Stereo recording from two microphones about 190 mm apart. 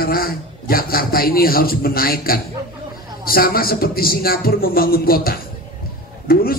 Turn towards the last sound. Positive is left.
turn(degrees=50)  # may be behind; listen again after turning